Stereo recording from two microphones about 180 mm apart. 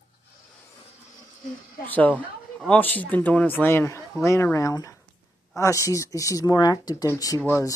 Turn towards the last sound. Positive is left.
turn(degrees=15)  # may be behind; listen again after turning